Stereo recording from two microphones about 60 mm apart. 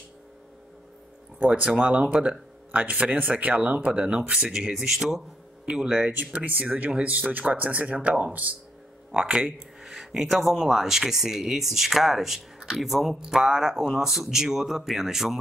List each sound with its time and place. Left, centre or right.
1.4 s speech: right
6.1 s speech: right
9.1 s speech: centre